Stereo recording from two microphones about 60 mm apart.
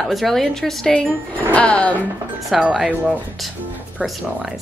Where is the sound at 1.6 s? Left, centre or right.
Centre.